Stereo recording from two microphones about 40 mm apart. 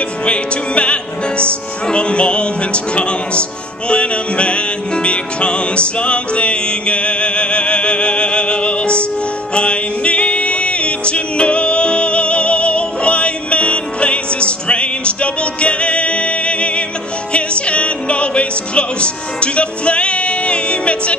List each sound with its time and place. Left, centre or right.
0.2 s music: left